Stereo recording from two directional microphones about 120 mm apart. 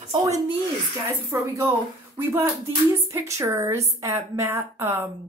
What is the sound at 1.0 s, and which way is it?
A woman's voice, 25° right (ahead or behind).